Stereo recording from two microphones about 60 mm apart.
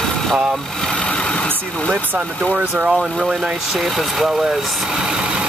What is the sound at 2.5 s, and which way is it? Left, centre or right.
Speech, centre.